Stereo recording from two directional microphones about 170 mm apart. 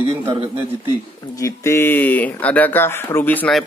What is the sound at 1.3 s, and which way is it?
A man's voice, 20° left (ahead or behind).